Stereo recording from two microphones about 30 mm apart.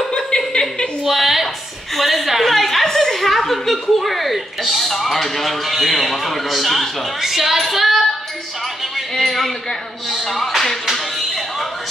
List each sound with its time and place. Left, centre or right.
0.1 s a sound: left
1.0 s a sound: centre
2.0 s a woman's voice: centre
2.8 s a woman's voice: centre
9.1 s speech: centre
10.0 s music: centre